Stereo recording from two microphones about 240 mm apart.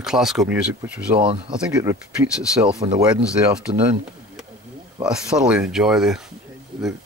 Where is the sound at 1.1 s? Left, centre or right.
Right.